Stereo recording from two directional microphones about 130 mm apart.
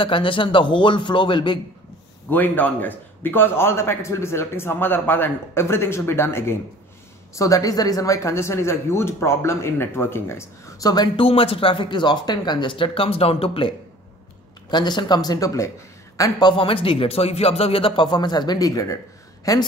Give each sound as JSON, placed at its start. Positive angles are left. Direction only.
{"t": 0.0, "sound": "speech", "side_deg": 40}
{"t": 2.2, "sound": "a man's voice", "side_deg": 15}
{"t": 11.1, "sound": "a man's voice", "side_deg": 45}